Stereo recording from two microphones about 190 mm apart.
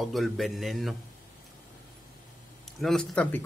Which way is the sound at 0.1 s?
Centre (ahead or behind).